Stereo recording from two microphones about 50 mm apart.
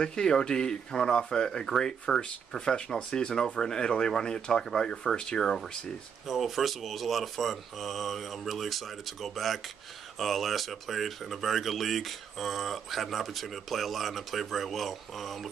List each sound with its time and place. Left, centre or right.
0.0 s speech: centre
6.2 s speech: centre